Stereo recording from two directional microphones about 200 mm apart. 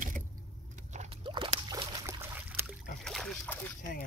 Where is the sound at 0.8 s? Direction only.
35° right (ahead or behind); by 2.7 s 10° right (ahead or behind).